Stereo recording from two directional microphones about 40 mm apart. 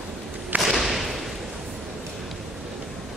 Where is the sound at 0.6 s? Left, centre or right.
Centre.